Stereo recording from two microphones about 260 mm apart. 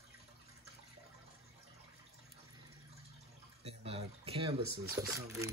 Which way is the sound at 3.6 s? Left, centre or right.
Right.